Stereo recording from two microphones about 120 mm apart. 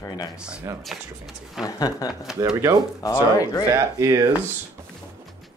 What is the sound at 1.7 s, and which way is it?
Speech, 30° left (ahead or behind).